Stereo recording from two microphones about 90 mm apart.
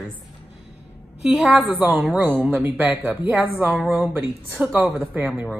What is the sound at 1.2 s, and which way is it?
A woman's voice, 15° right (ahead or behind).